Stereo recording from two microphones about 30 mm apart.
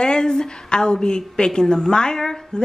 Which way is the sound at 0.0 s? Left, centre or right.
Left.